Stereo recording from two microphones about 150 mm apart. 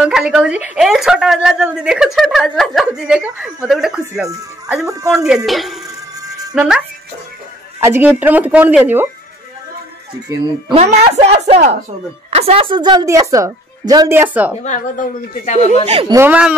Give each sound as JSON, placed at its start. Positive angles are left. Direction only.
{"t": 0.0, "sound": "speech", "side_deg": -5}
{"t": 4.8, "sound": "a woman's voice", "side_deg": -20}
{"t": 5.1, "sound": "speech", "side_deg": -5}
{"t": 7.8, "sound": "speech", "side_deg": -15}
{"t": 10.7, "sound": "a woman's voice", "side_deg": -50}
{"t": 14.1, "sound": "speech", "side_deg": -10}
{"t": 14.6, "sound": "speech", "side_deg": 50}
{"t": 15.8, "sound": "speech", "side_deg": -40}
{"t": 16.3, "sound": "speech", "side_deg": -5}